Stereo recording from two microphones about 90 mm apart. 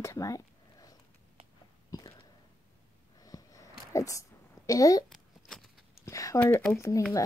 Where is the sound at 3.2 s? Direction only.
40° left (ahead or behind).